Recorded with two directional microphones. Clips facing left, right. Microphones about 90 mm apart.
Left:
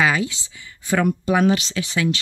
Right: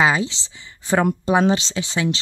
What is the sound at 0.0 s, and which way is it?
A woman's voice, 25° right (ahead or behind).